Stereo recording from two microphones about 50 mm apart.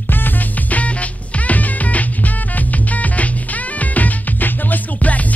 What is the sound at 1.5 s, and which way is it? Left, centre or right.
Music, left.